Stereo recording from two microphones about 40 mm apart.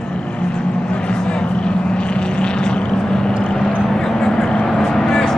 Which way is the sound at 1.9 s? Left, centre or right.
Left.